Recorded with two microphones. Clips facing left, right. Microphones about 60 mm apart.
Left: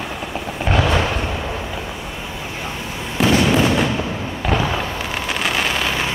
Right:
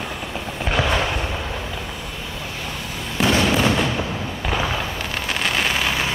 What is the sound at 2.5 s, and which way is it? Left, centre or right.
Vehicle, left.